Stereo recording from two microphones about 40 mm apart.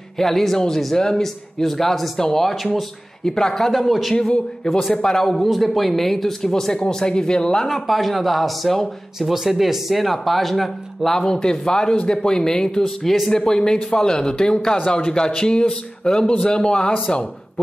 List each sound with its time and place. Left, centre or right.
0.2 s speech: centre
1.6 s speech: centre
2.5 s speech: centre
3.3 s speech: centre
3.7 s speech: centre
4.9 s speech: centre
5.2 s speech: centre
9.3 s speech: centre
11.1 s speech: centre